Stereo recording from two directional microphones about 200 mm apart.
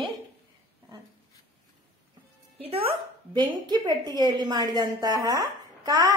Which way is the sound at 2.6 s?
30° right (ahead or behind).